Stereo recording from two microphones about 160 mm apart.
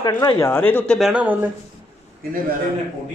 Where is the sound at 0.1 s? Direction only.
20° left (ahead or behind).